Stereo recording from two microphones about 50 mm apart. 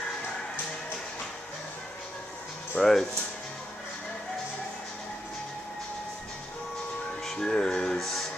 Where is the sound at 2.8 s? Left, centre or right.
Centre.